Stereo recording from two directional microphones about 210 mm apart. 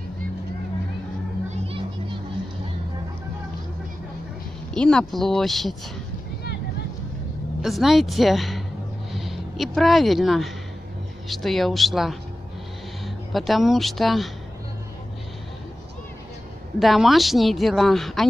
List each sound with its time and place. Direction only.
1.5 s children playing: 25° right (ahead or behind)
4.7 s speech: 5° left (ahead or behind)
7.6 s speech: centre (ahead or behind)
16.8 s speech: centre (ahead or behind)